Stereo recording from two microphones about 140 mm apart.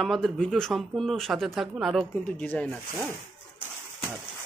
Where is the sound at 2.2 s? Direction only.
10° left (ahead or behind).